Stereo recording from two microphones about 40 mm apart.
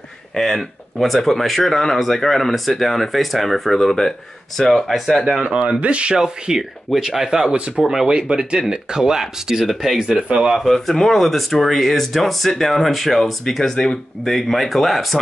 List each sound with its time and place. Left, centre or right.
0.4 s speech: centre
5.8 s speech: right
6.1 s speech: centre
7.8 s speech: centre
8.1 s speech: right
10.6 s speech: centre
14.3 s speech: centre